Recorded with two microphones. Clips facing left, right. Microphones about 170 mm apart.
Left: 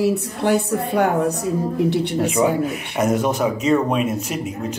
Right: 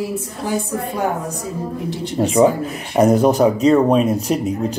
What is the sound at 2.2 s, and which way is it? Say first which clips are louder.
Speech: right 6 dB; 30° right (ahead or behind).